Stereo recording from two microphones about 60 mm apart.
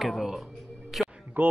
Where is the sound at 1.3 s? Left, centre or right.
Right.